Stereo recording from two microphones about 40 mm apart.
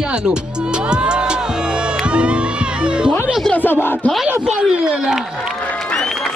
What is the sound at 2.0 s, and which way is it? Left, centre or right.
Music, right.